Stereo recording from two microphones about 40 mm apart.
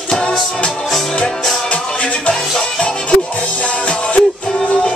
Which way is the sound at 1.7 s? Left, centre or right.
Left.